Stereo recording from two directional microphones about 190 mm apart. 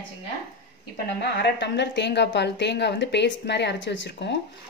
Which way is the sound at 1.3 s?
65° left (ahead or behind).